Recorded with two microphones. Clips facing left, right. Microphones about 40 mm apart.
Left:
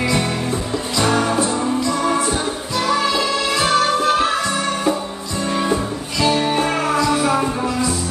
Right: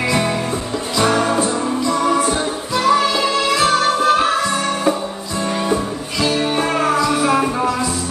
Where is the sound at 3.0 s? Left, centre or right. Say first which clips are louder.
Right 2 dB; centre.